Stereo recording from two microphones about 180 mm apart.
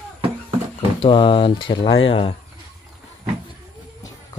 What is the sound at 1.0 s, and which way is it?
Speech, 30° left (ahead or behind).